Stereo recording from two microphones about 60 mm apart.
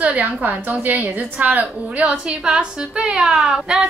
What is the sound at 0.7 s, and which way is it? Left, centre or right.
A woman's voice, right.